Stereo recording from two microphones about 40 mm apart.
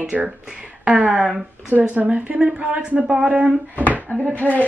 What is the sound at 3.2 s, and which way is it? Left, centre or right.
Speech, right.